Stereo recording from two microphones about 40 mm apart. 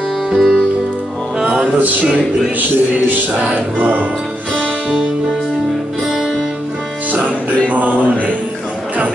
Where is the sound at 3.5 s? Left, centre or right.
Right.